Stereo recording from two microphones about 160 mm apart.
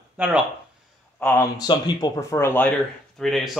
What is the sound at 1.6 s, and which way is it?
Speech, 25° left (ahead or behind).